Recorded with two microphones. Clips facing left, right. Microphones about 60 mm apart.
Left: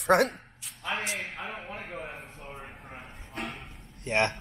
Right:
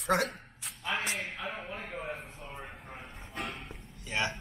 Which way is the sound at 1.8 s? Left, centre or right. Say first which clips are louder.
Even; centre.